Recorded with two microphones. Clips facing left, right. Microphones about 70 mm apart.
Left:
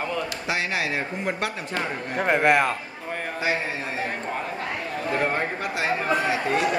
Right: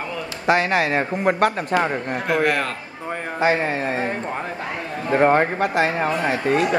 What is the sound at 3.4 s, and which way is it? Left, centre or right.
Speech, right.